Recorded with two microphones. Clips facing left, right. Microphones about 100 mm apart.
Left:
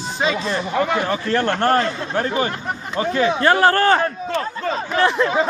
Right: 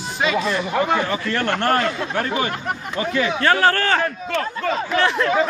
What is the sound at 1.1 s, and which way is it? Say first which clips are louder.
A man's voice: left 2 dB; 30° left (ahead or behind).